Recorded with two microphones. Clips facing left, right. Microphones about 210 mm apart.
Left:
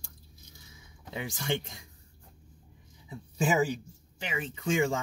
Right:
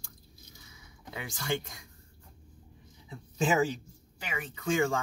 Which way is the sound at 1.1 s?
20° left (ahead or behind).